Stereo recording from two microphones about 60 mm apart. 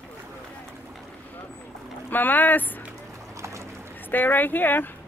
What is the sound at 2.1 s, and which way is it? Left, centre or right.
Speech, left.